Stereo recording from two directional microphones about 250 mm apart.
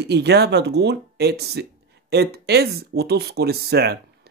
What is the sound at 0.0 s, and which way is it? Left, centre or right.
Speech, right.